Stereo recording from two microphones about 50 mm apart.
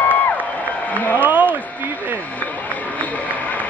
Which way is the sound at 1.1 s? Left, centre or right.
Right.